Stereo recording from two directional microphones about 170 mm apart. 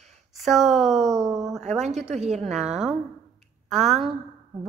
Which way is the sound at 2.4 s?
Centre (ahead or behind).